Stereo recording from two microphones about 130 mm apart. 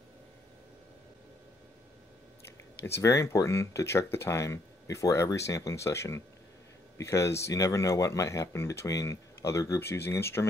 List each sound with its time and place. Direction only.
2.8 s speech: 20° left (ahead or behind)